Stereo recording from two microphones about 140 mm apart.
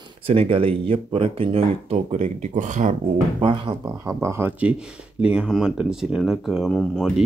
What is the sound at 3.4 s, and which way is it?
Speech, 40° right (ahead or behind).